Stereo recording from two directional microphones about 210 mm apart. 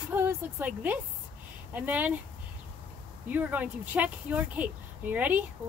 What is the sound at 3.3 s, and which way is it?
Speech, 5° right (ahead or behind).